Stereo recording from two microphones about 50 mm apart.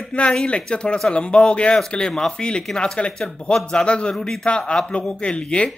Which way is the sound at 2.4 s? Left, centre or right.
Centre.